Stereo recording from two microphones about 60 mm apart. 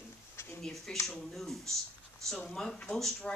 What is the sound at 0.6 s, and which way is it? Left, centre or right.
Speech, centre.